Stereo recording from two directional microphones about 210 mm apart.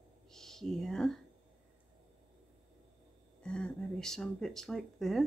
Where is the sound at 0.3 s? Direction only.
Centre (ahead or behind).